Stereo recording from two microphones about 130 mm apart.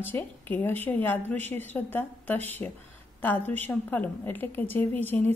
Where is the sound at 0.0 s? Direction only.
15° left (ahead or behind).